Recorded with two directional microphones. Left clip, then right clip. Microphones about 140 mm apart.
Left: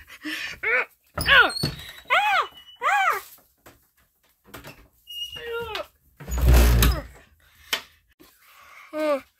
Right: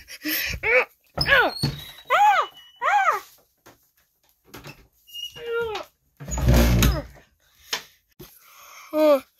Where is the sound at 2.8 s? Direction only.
Centre (ahead or behind).